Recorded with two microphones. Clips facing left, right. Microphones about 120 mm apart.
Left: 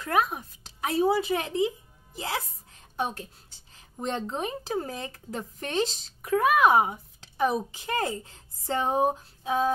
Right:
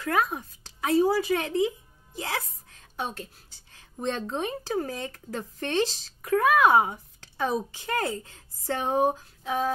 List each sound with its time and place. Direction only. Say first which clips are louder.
0.1 s a woman's voice: left 1 dB; 15° left (ahead or behind)
4.3 s female singing: right 1 dB; 20° left (ahead or behind)
6.3 s a woman's voice: right 1 dB; 15° left (ahead or behind)
8.0 s female singing: even; 20° left (ahead or behind)